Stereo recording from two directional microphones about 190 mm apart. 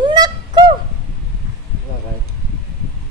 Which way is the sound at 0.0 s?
25° right (ahead or behind).